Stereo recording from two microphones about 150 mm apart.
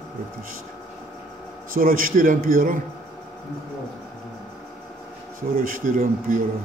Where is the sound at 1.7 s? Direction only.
70° right (ahead or behind).